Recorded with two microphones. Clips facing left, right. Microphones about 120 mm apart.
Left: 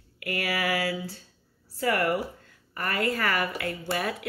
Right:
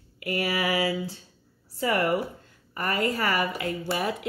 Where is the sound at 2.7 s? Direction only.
25° right (ahead or behind).